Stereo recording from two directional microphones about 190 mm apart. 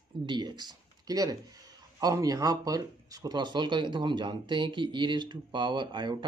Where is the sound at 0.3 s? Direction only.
20° right (ahead or behind).